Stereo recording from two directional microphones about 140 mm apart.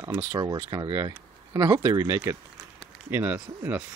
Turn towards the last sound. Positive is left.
turn(degrees=-10)  # may be behind; listen again after turning